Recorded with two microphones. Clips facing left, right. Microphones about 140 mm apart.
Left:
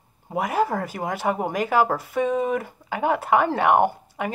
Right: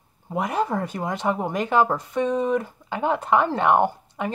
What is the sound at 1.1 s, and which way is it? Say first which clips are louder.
A woman's voice: left 1 dB; 10° left (ahead or behind).